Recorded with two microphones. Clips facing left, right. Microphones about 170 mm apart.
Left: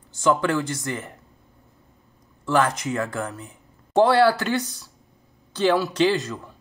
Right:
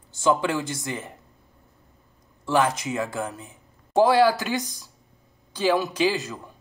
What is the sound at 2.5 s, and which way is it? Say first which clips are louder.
Speech: left 1 dB; 15° right (ahead or behind).